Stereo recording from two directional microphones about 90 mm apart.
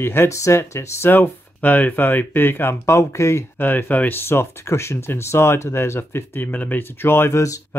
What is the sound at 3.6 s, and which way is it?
Speech, 20° left (ahead or behind).